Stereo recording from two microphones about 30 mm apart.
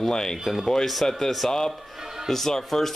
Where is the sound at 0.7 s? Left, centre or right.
Centre.